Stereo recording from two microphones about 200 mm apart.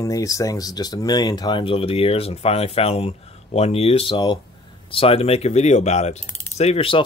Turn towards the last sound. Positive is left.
turn(degrees=25)  # may be behind; listen again after turning